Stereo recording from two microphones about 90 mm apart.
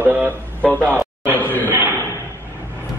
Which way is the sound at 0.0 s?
15° right (ahead or behind).